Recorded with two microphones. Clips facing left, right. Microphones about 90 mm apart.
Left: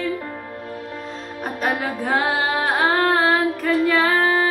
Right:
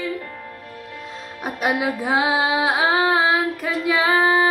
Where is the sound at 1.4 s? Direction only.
10° right (ahead or behind).